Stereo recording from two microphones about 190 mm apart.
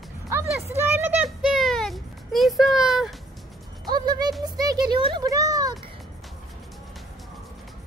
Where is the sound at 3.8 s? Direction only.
20° right (ahead or behind).